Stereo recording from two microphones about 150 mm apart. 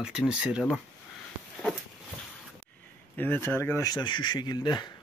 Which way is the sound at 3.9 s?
30° left (ahead or behind).